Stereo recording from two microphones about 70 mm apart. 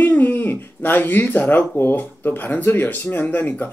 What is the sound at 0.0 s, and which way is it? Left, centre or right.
Speech, left.